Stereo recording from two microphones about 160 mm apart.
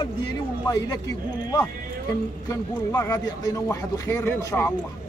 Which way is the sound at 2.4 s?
20° left (ahead or behind).